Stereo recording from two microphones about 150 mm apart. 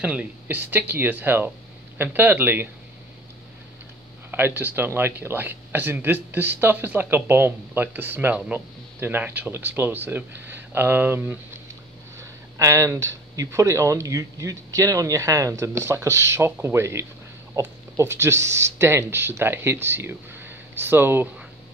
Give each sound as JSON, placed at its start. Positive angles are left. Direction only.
{"t": 0.0, "sound": "speech", "side_deg": -10}
{"t": 4.3, "sound": "speech", "side_deg": -15}